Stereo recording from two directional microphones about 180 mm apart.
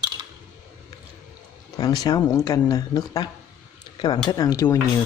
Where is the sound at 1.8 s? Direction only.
20° left (ahead or behind).